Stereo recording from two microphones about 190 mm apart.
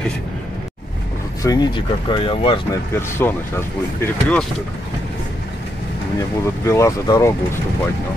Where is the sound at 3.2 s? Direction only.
10° left (ahead or behind).